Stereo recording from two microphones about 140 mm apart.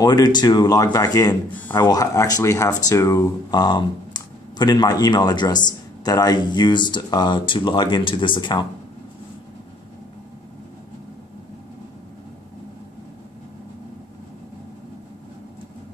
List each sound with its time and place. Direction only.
0.0 s speech: 30° left (ahead or behind)